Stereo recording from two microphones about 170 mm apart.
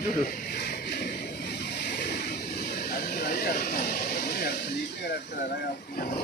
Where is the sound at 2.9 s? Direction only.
70° left (ahead or behind).